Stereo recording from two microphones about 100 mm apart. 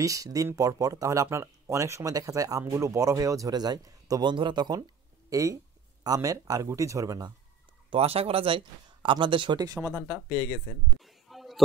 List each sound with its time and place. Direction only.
0.0 s speech: 35° right (ahead or behind)
4.3 s speech: 55° right (ahead or behind)
5.3 s speech: 35° right (ahead or behind)
7.9 s speech: 80° right; by 10.6 s 45° right (ahead or behind)
11.0 s a sound: centre (ahead or behind)